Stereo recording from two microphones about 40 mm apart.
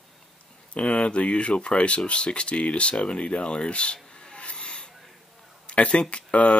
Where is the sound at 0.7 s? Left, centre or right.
Left.